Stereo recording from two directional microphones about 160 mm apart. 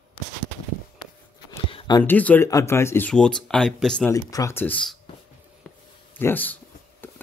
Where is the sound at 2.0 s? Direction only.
10° left (ahead or behind).